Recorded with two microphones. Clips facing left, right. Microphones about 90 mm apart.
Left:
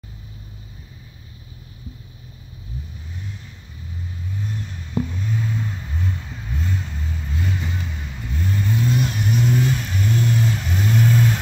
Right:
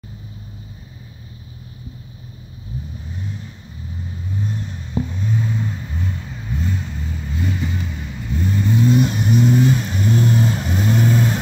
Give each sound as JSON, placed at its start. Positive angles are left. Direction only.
{"t": 4.4, "sound": "vehicle", "side_deg": -25}
{"t": 5.2, "sound": "vehicle", "side_deg": -10}